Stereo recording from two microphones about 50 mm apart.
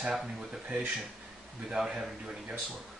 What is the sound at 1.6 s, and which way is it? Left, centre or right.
Speech, centre.